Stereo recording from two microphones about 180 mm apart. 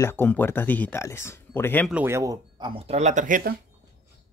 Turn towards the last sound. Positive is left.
turn(degrees=-50)  # may be behind; listen again after turning